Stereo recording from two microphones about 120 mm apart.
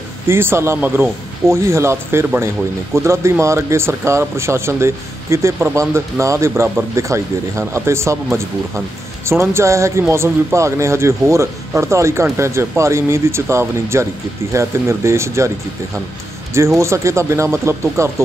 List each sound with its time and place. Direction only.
0.3 s speech: 20° right (ahead or behind)
16.5 s speech: 25° right (ahead or behind)